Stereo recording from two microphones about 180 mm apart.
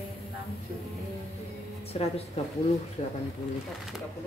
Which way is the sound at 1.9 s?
35° left (ahead or behind).